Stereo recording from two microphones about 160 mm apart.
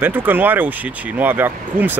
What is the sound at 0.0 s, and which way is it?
Speech, 10° right (ahead or behind).